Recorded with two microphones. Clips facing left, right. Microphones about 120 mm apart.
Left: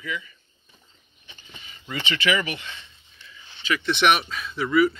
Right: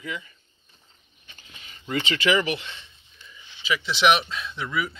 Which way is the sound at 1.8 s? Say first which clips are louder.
Right 2 dB; 40° right (ahead or behind).